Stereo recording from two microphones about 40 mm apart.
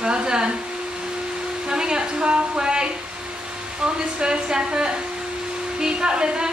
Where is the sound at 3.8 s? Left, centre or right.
Right.